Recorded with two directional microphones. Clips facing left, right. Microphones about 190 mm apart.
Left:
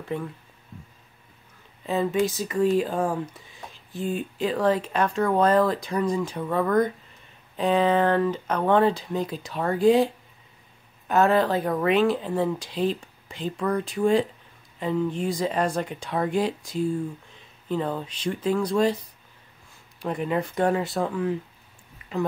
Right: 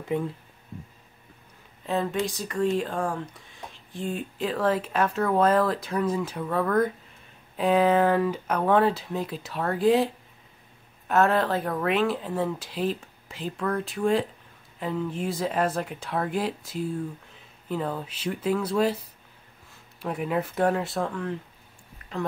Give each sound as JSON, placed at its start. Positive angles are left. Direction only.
{"t": 0.1, "sound": "speech", "side_deg": -20}
{"t": 1.9, "sound": "speech", "side_deg": 0}
{"t": 20.0, "sound": "speech", "side_deg": -5}